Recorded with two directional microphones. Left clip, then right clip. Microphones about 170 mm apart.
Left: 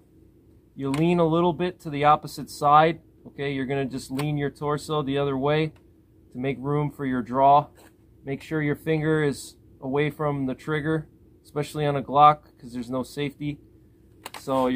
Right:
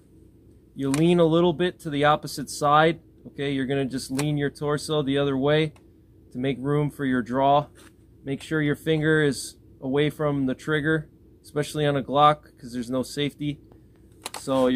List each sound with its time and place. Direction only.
0.7 s speech: centre (ahead or behind)